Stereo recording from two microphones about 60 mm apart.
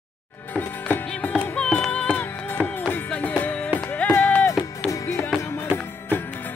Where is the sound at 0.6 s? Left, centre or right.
Left.